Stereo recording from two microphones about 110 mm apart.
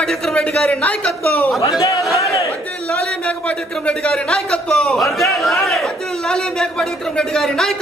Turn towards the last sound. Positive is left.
turn(degrees=5)  # may be behind; listen again after turning